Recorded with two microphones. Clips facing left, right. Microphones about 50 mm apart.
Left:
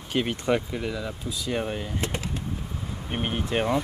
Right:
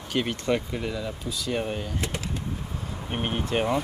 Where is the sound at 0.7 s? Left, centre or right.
Centre.